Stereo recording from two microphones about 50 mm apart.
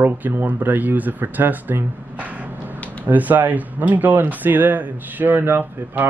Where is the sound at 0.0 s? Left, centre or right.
Right.